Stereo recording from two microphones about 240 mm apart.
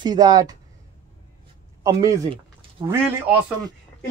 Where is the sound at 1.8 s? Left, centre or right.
Centre.